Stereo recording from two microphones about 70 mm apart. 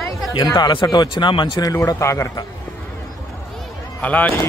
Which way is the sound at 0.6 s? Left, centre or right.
Left.